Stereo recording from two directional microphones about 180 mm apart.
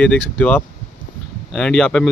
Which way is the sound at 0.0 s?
5° left (ahead or behind).